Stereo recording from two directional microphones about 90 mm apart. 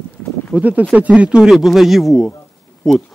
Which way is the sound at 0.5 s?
15° right (ahead or behind).